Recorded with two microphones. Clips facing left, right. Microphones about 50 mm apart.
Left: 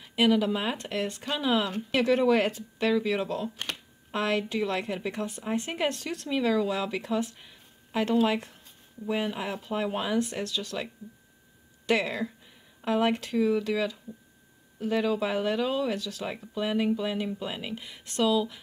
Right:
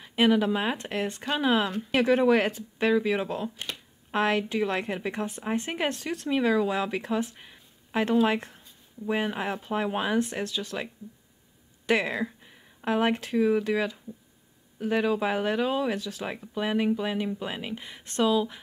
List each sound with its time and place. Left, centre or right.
0.1 s a woman's voice: right